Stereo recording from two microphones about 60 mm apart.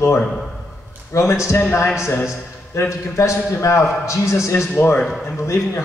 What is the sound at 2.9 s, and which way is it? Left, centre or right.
A man's voice, left.